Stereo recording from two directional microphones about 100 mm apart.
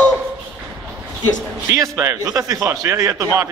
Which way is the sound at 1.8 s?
30° right (ahead or behind).